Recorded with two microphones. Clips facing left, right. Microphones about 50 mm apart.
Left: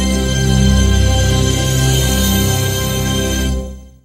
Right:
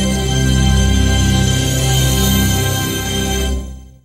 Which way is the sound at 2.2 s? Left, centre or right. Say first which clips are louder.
Even; right.